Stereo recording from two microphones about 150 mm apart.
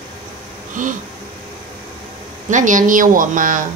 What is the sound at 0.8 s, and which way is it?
Speech, 60° right (ahead or behind).